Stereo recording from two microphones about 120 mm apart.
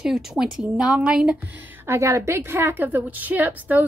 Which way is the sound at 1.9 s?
25° right (ahead or behind).